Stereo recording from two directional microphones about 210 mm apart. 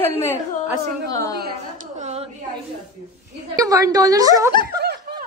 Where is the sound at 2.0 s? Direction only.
30° right (ahead or behind).